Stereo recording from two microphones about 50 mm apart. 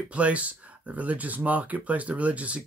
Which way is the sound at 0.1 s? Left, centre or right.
Right.